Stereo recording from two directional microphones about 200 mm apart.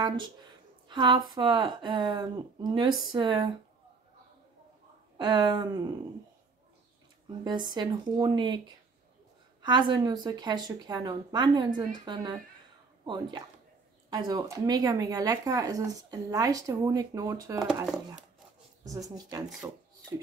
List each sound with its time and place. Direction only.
0.8 s speech: 20° right (ahead or behind)
5.1 s speech: 20° right (ahead or behind)
7.4 s speech: 20° right (ahead or behind)
9.6 s speech: 20° right (ahead or behind)
18.9 s speech: 15° right (ahead or behind)